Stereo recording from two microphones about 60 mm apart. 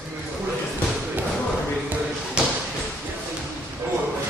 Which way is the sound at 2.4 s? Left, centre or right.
Centre.